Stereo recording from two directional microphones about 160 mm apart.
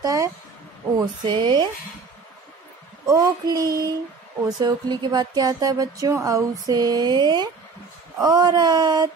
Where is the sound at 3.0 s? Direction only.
20° right (ahead or behind).